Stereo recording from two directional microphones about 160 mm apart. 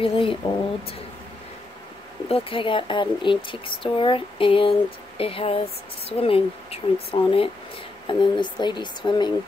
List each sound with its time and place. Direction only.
0.0 s speech: 35° left (ahead or behind)
2.2 s speech: 35° left (ahead or behind)